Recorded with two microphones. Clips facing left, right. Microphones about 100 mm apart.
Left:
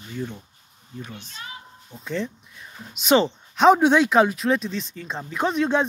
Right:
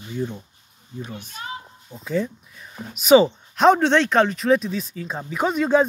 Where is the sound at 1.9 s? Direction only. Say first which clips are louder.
Right 4 dB; 5° right (ahead or behind).